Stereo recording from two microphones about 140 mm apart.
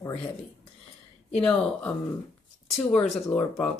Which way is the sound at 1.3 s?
5° left (ahead or behind).